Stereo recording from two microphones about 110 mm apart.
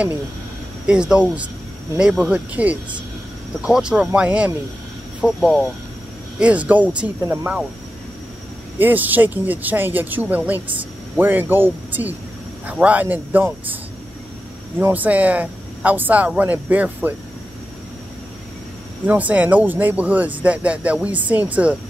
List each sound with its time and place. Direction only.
0.8 s speech: 10° right (ahead or behind)
2.2 s speech: 15° right (ahead or behind)
8.7 s speech: 15° right (ahead or behind)
14.8 s speech: 15° right (ahead or behind)
19.0 s speech: 15° right (ahead or behind)